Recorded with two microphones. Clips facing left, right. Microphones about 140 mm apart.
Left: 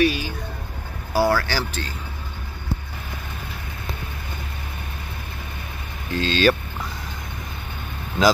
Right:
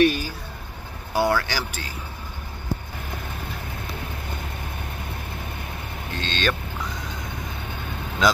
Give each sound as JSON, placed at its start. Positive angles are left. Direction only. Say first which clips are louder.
{"t": 0.0, "sound": "vehicle", "louder": "right 1 dB", "side_deg": -50}
{"t": 1.1, "sound": "vehicle", "louder": "left 2 dB", "side_deg": -20}
{"t": 1.7, "sound": "a man's voice", "louder": "left 4 dB", "side_deg": -10}
{"t": 6.1, "sound": "speech", "louder": "left 8 dB", "side_deg": 5}